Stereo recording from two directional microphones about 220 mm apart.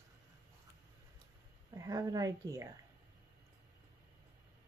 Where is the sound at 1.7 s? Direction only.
15° right (ahead or behind).